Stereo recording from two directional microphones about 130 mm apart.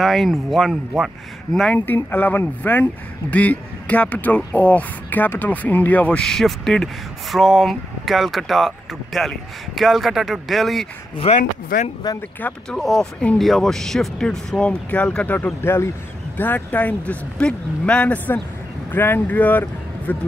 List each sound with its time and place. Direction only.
0.0 s speech: centre (ahead or behind)
1.9 s speech: 15° left (ahead or behind)
11.3 s speech: 50° left (ahead or behind)
11.7 s speech: 90° left
12.4 s speech: 10° left (ahead or behind)